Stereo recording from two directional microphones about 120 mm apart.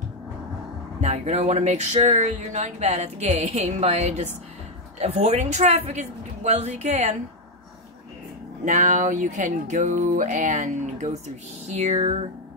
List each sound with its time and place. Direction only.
1.0 s speech: 70° right (ahead or behind)
8.6 s speech: 90° right; by 12.3 s 65° right (ahead or behind)